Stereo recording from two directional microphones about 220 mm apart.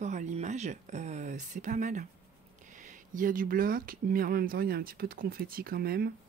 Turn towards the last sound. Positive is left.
turn(degrees=-45)  # may be behind; listen again after turning